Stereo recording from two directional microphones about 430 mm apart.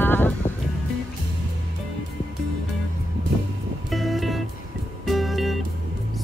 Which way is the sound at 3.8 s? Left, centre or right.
Centre.